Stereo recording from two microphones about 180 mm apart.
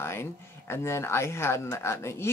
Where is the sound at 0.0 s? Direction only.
15° left (ahead or behind).